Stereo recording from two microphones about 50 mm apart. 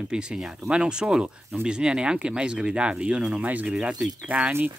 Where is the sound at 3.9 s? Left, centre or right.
Centre.